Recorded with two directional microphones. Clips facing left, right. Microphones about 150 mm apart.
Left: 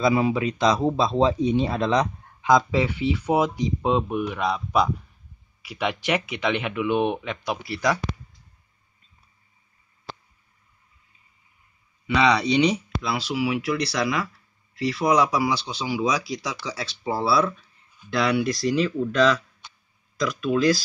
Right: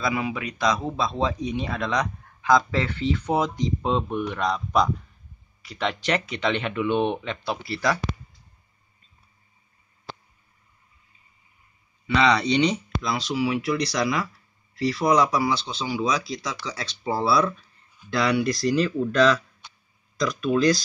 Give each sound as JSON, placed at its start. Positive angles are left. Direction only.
{"t": 0.0, "sound": "speech", "side_deg": 30}
{"t": 12.1, "sound": "speech", "side_deg": 10}